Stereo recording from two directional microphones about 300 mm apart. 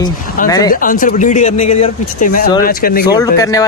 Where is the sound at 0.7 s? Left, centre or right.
Left.